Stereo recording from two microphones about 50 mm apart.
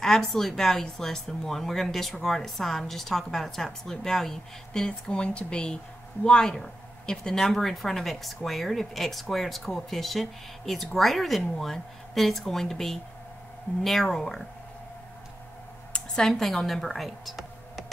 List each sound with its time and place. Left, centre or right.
0.0 s speech: centre
4.8 s speech: centre
15.9 s a woman's voice: centre